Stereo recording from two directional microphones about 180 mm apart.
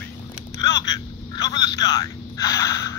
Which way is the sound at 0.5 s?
20° left (ahead or behind).